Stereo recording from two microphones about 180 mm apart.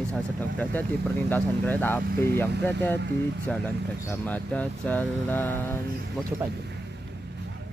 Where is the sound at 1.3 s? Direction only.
10° left (ahead or behind).